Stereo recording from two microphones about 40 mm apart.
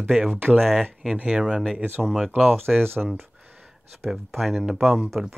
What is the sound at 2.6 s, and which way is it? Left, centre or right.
Speech, right.